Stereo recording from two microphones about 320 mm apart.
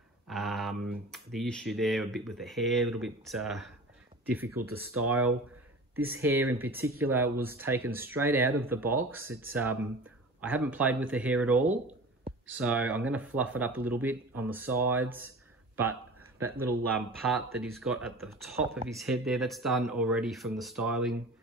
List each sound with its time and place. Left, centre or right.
0.3 s speech: centre
4.9 s speech: right
5.9 s speech: centre
15.1 s a sound: centre
16.3 s speech: centre
17.7 s speech: centre